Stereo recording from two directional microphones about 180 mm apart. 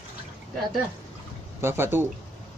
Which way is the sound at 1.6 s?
10° right (ahead or behind).